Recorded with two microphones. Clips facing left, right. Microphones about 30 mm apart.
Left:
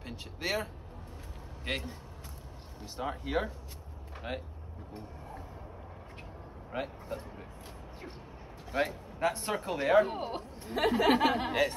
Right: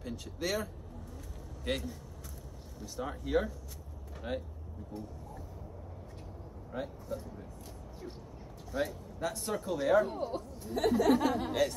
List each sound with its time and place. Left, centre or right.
0.0 s a man's voice: left
4.1 s vehicle: left
4.9 s speech: left
6.7 s speech: left
8.7 s speech: left
10.0 s speech: left